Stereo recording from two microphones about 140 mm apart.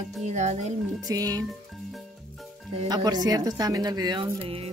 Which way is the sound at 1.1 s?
25° right (ahead or behind).